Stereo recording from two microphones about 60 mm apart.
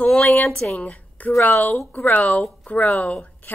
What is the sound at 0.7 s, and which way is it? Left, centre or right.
A woman's voice, left.